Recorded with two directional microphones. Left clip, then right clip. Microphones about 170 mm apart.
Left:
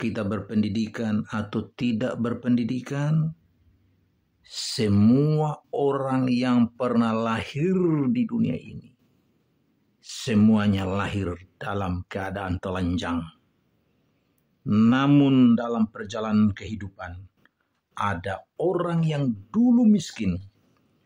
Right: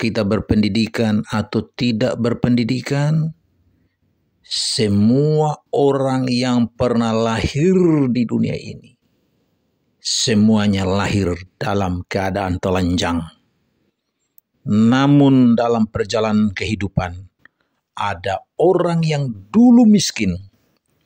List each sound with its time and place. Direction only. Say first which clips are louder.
0.0 s speech: right 10 dB; 35° right (ahead or behind)
4.4 s speech: right 9 dB; 20° right (ahead or behind)
4.9 s speech: right 3 dB; 10° right (ahead or behind)
5.4 s speech: right 9 dB; 30° right (ahead or behind)
9.9 s speech: right 9 dB; 25° right (ahead or behind)
15.5 s speech: right 9 dB; 40° right (ahead or behind)
17.9 s speech: right 7 dB; 30° right (ahead or behind)